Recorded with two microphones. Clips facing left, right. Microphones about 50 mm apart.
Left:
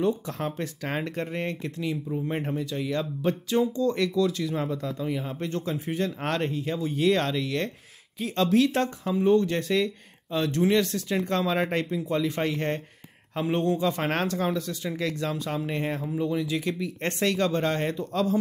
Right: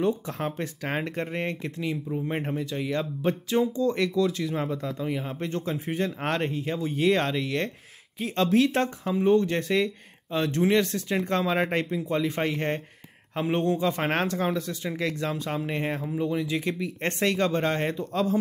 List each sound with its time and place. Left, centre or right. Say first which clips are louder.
0.3 s speech: even; right